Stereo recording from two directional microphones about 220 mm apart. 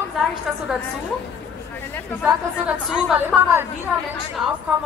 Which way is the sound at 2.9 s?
5° right (ahead or behind).